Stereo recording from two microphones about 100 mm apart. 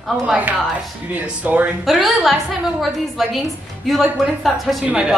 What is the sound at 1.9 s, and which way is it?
A woman's voice, centre (ahead or behind).